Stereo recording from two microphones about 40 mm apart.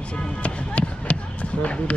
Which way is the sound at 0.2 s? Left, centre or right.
Left.